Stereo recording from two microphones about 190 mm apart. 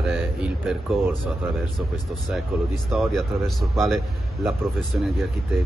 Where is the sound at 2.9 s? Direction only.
Centre (ahead or behind).